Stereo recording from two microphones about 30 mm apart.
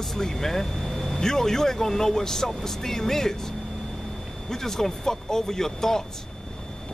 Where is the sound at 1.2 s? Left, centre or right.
Centre.